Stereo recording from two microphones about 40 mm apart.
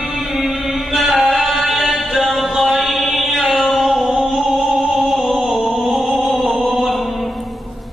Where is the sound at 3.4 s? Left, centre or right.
Centre.